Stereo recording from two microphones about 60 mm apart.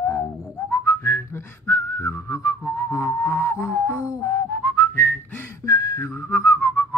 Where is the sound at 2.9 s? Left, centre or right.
Left.